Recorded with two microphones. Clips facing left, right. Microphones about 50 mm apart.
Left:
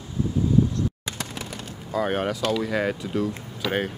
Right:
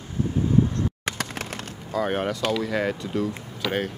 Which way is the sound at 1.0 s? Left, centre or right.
Right.